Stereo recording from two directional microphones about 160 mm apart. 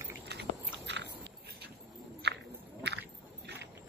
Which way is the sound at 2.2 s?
90° right.